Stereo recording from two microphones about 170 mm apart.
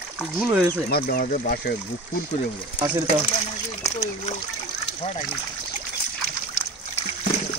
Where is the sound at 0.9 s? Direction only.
60° left (ahead or behind).